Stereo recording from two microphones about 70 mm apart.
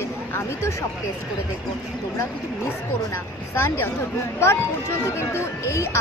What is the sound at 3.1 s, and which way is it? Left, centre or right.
Speech, left.